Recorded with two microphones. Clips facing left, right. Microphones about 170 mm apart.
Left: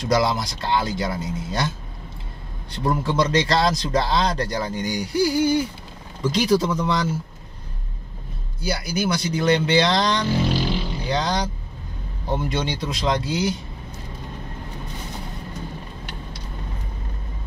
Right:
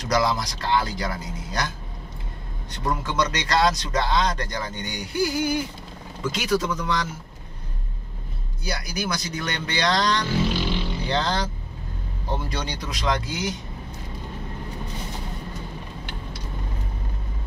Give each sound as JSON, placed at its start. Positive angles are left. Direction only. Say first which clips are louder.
{"t": 0.1, "sound": "speech", "louder": "left 2 dB", "side_deg": 25}
{"t": 2.8, "sound": "speech", "louder": "left 4 dB", "side_deg": 30}
{"t": 8.6, "sound": "speech", "louder": "left 5 dB", "side_deg": 30}